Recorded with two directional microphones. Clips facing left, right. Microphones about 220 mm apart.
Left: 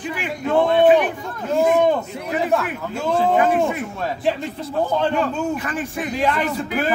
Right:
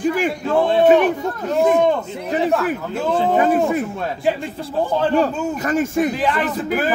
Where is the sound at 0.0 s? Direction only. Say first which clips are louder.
Right 7 dB; 40° right (ahead or behind).